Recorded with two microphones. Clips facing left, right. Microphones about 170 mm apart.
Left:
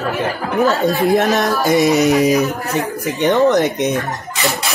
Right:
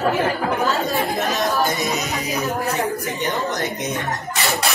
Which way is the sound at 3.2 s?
75° left (ahead or behind).